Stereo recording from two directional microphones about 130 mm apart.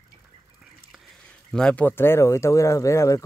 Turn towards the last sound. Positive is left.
turn(degrees=25)  # may be behind; listen again after turning